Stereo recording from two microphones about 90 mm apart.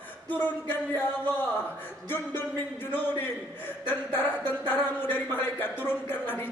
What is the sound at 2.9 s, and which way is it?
Speech, 20° left (ahead or behind).